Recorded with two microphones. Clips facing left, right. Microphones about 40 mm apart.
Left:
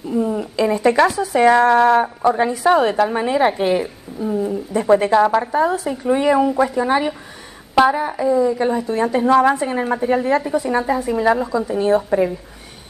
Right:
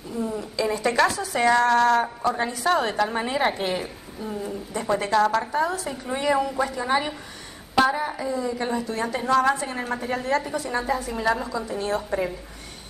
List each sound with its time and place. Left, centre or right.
0.1 s a woman's voice: left
3.0 s a woman's voice: centre
4.4 s a woman's voice: left
8.8 s a woman's voice: left
11.2 s speech: centre
11.6 s a woman's voice: left